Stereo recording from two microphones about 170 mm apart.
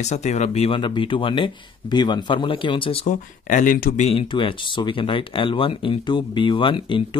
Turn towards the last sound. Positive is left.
turn(degrees=30)  # may be behind; listen again after turning